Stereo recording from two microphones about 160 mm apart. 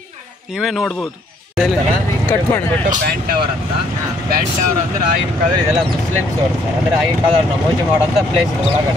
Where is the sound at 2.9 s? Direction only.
70° right (ahead or behind).